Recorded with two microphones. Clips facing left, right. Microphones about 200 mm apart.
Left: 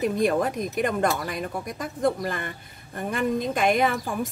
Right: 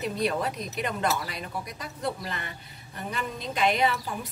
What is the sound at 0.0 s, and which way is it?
Speech, 50° left (ahead or behind).